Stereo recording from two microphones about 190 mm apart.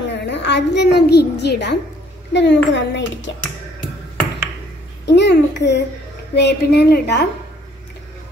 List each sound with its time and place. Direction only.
0.1 s a woman's voice: 70° left (ahead or behind)
5.0 s a woman's voice: 65° left (ahead or behind)